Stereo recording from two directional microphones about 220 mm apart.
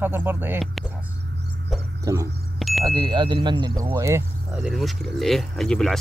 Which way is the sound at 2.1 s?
15° right (ahead or behind).